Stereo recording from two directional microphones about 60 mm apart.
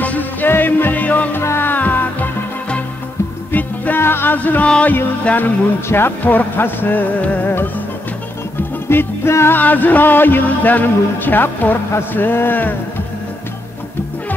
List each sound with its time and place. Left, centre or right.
0.0 s music: left
1.4 s music: left
1.7 s music: left
3.5 s music: left
4.4 s music: left
5.9 s speech: left
8.8 s music: left
9.6 s speech: left